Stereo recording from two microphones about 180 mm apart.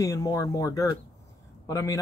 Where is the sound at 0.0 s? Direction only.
20° left (ahead or behind).